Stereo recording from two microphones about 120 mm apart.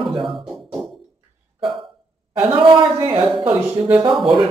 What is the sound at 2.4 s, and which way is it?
Speech, 45° right (ahead or behind).